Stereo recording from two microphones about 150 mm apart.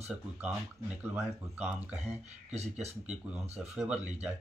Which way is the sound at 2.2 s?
45° right (ahead or behind).